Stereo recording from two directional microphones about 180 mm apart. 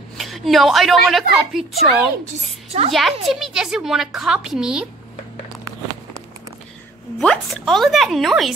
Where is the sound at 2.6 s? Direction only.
35° right (ahead or behind).